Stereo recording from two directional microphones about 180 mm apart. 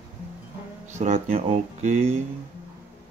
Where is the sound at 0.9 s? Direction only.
40° right (ahead or behind).